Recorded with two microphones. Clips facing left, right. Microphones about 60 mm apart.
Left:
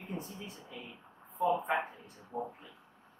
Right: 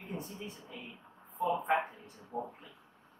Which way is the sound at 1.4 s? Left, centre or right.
Centre.